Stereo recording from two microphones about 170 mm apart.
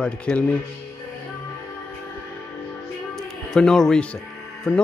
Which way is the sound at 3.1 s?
5° left (ahead or behind).